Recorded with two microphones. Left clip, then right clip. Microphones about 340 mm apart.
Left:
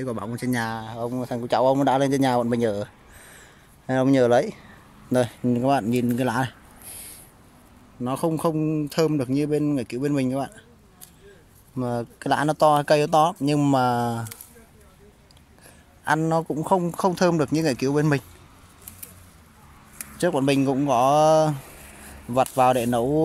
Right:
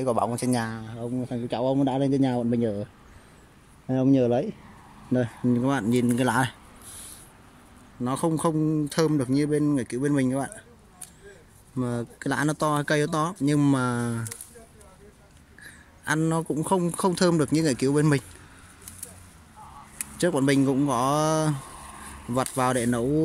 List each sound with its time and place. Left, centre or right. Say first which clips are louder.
0.0 s speech: right 5 dB; centre
0.9 s speech: left 4 dB; left
2.0 s speech: left 4 dB; centre
3.8 s speech: left 3 dB; left
5.6 s a man's voice: left 5 dB; centre
8.0 s a man's voice: left 2 dB; centre
11.8 s a man's voice: left 3 dB; centre
15.6 s a man's voice: left 5 dB; centre
20.2 s a man's voice: left 1 dB; centre